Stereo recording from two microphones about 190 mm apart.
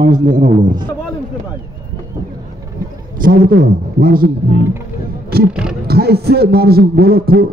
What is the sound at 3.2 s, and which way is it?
A man's voice, 50° right (ahead or behind).